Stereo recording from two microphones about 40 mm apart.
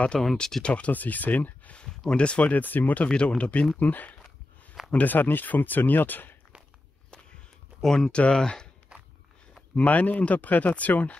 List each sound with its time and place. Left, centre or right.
0.1 s speech: centre
0.6 s speech: left
0.9 s speech: left
1.8 s speech: left
2.5 s speech: left
3.1 s speech: left
7.8 s speech: centre
8.1 s speech: left
9.8 s speech: left